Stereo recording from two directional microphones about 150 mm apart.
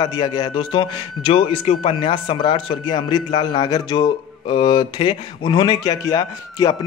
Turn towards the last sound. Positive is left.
turn(degrees=25)  # may be behind; listen again after turning